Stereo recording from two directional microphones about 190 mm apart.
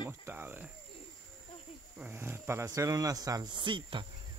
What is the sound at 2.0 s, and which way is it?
Speech, 10° right (ahead or behind).